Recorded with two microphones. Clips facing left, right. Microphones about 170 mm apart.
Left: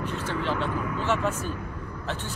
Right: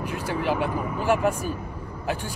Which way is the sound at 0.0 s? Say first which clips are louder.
Right 2 dB; 10° right (ahead or behind).